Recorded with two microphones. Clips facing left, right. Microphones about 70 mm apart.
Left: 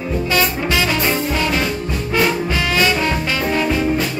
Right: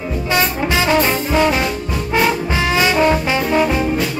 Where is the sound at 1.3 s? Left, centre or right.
Right.